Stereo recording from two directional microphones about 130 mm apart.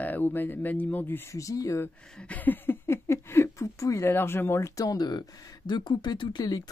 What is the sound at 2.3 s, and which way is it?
Speech, 15° left (ahead or behind).